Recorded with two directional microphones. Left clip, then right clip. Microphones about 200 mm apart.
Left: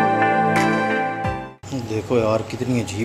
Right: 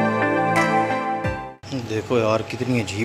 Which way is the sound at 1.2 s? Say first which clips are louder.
Left 1 dB; 5° left (ahead or behind).